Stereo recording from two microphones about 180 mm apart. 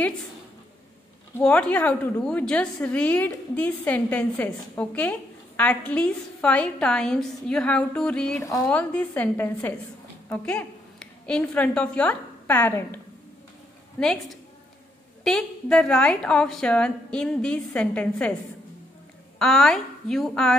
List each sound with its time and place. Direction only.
1.3 s a woman's voice: 5° left (ahead or behind)
8.4 s a woman's voice: 20° left (ahead or behind)
8.6 s a woman's voice: 5° left (ahead or behind)
13.9 s a woman's voice: 5° left (ahead or behind)
19.3 s a woman's voice: centre (ahead or behind)